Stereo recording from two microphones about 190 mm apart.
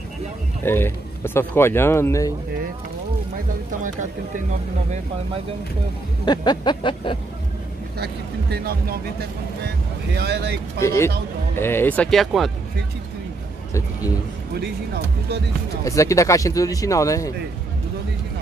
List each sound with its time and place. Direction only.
0.7 s speech: 10° left (ahead or behind)
6.2 s a sound: 20° left (ahead or behind)
8.0 s speech: 55° right (ahead or behind)
10.1 s speech: 60° right (ahead or behind)
10.8 s speech: 15° left (ahead or behind); by 12.4 s centre (ahead or behind)
15.8 s speech: 15° left (ahead or behind)